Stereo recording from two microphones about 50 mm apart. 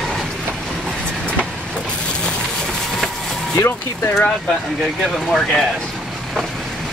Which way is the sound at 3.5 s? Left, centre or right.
Left.